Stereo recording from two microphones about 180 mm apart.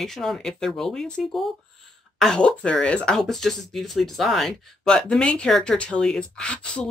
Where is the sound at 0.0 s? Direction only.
Centre (ahead or behind).